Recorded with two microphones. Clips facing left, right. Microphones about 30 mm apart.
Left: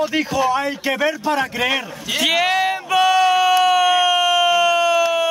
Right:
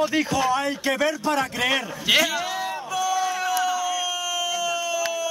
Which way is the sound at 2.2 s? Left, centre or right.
Left.